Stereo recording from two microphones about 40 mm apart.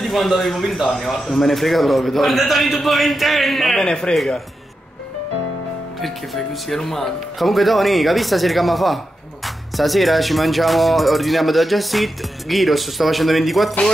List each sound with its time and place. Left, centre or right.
0.0 s speech: centre
3.8 s speech: centre
5.9 s speech: centre